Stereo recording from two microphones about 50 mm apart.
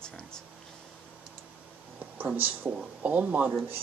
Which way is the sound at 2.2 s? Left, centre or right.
Right.